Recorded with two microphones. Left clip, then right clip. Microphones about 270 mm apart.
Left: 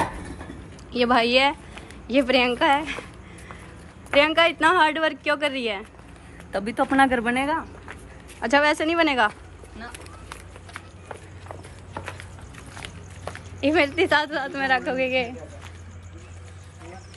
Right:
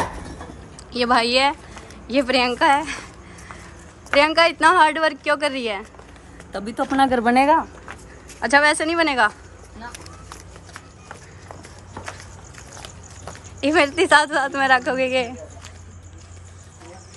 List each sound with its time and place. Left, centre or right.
0.9 s a woman's voice: centre
4.1 s a woman's voice: centre
6.5 s speech: centre
6.9 s speech: centre
8.4 s a woman's voice: centre
13.2 s a woman's voice: centre